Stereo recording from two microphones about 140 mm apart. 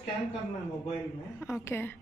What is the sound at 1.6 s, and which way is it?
Speech, 15° left (ahead or behind).